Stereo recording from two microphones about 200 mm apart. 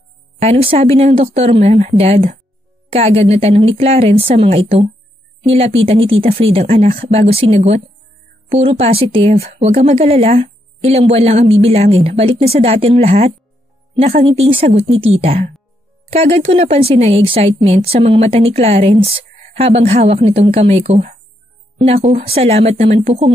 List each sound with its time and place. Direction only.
0.4 s speech: 30° right (ahead or behind)